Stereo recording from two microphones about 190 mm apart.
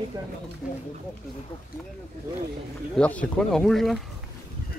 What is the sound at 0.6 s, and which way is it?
Speech, 5° right (ahead or behind).